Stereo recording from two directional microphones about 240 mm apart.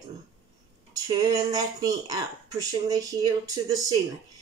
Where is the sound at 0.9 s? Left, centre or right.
Centre.